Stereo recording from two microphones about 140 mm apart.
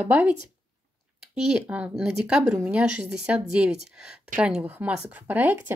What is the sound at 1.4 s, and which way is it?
Speech, 5° right (ahead or behind).